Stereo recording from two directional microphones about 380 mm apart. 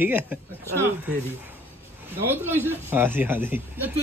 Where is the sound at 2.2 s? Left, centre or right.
Centre.